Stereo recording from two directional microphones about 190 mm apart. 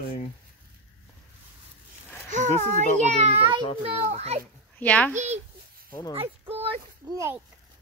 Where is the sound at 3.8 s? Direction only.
30° right (ahead or behind).